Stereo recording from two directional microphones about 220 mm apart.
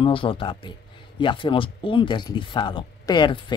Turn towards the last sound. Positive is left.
turn(degrees=20)  # may be behind; listen again after turning